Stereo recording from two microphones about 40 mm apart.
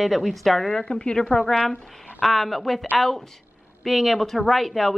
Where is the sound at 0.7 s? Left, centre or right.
Left.